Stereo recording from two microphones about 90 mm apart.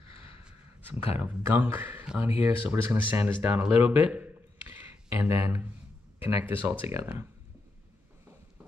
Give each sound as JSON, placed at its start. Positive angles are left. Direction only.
{"t": 0.8, "sound": "a man's voice", "side_deg": -25}